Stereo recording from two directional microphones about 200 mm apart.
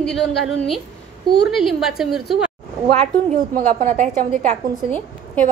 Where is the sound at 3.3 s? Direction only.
45° right (ahead or behind).